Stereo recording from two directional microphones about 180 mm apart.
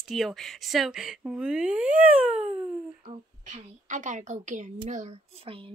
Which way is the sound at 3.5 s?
45° right (ahead or behind).